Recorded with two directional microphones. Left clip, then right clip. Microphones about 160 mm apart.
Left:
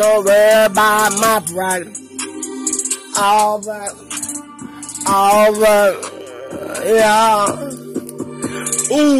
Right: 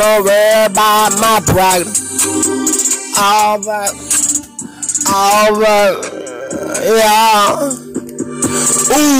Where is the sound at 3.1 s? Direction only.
20° right (ahead or behind).